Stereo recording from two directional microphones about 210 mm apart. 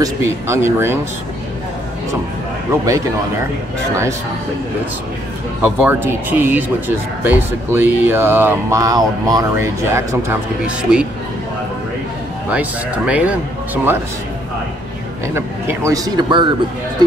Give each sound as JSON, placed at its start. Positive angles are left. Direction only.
{"t": 0.0, "sound": "speech", "side_deg": -15}
{"t": 2.7, "sound": "speech", "side_deg": -15}
{"t": 5.6, "sound": "speech", "side_deg": -10}
{"t": 12.4, "sound": "speech", "side_deg": -5}
{"t": 15.3, "sound": "speech", "side_deg": -10}